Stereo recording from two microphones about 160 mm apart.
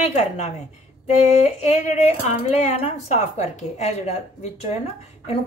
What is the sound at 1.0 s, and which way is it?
Speech, 45° left (ahead or behind).